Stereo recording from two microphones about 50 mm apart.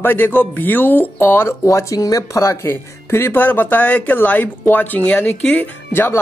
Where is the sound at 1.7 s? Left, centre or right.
Left.